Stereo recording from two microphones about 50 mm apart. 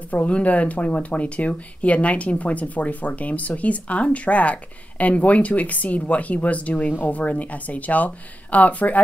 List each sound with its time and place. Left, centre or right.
0.1 s speech: left